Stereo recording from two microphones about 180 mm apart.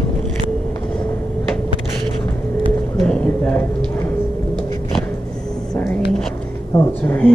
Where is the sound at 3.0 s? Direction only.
5° left (ahead or behind).